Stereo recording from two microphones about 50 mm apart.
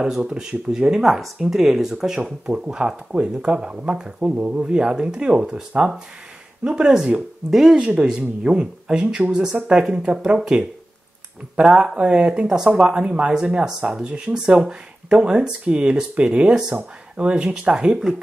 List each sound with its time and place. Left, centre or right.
0.0 s speech: centre
6.6 s speech: centre